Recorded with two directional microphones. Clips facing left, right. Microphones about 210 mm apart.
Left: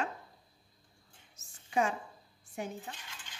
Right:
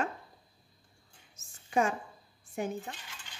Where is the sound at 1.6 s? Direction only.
50° right (ahead or behind).